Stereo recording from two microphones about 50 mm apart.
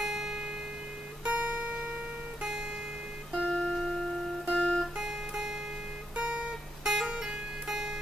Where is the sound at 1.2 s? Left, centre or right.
Right.